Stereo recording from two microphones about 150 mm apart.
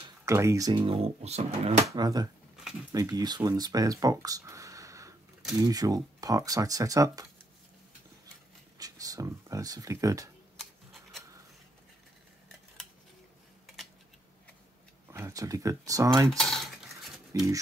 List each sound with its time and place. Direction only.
0.2 s speech: 20° right (ahead or behind); by 1.9 s 45° right (ahead or behind)
1.9 s speech: 25° right (ahead or behind)
8.7 s speech: 25° right (ahead or behind)
10.6 s a sound: centre (ahead or behind)
15.0 s speech: 15° right (ahead or behind)
16.3 s cutlery: 5° left (ahead or behind)
17.3 s speech: 20° right (ahead or behind)